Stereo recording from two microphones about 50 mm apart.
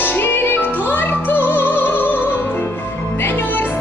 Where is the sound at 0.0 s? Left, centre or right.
Left.